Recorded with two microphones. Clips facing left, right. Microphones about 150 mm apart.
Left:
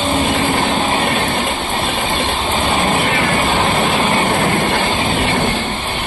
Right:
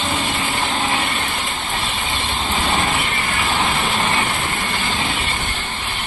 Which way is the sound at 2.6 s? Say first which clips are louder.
Left 5 dB; 55° left (ahead or behind).